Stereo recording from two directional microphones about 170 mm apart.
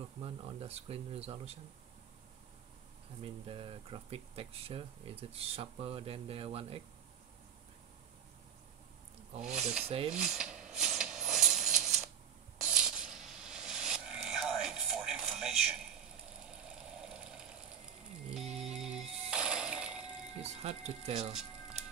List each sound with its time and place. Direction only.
0.2 s speech: 35° right (ahead or behind)
3.2 s speech: 35° right (ahead or behind)
9.4 s speech: 5° right (ahead or behind)
9.8 s speech: 35° right (ahead or behind)
10.1 s a sound: 5° right (ahead or behind)
16.4 s vehicle: 5° right (ahead or behind)
18.3 s music: 5° right (ahead or behind)
20.4 s a sound: 40° right (ahead or behind)
21.0 s speech: 40° right (ahead or behind)
21.3 s music: 5° right (ahead or behind)